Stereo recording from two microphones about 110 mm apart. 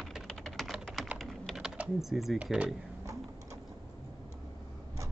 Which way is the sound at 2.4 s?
10° right (ahead or behind).